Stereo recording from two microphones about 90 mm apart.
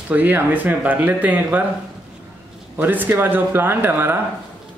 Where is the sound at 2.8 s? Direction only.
20° right (ahead or behind).